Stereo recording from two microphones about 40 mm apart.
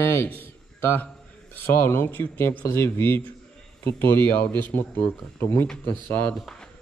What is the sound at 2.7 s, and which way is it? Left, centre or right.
A man's voice, left.